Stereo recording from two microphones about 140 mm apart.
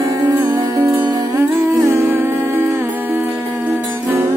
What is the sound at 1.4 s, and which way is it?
Humming, 15° right (ahead or behind).